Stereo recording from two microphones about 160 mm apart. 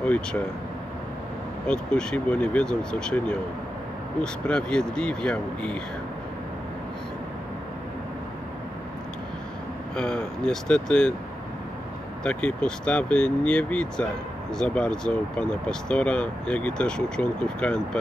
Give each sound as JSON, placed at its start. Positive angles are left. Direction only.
{"t": 0.0, "sound": "speech", "side_deg": 10}
{"t": 1.7, "sound": "speech", "side_deg": 5}
{"t": 9.9, "sound": "speech", "side_deg": 5}
{"t": 12.2, "sound": "speech", "side_deg": 5}